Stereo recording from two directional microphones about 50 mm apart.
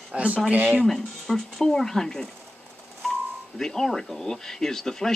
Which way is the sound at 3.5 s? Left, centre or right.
Centre.